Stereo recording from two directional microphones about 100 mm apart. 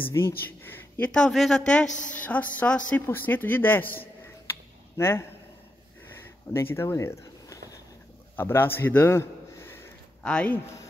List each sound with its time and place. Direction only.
0.2 s speech: 40° left (ahead or behind)
0.5 s a man's voice: 20° left (ahead or behind)
6.5 s speech: 25° left (ahead or behind)
8.4 s a man's voice: 25° left (ahead or behind)
10.2 s speech: 10° left (ahead or behind)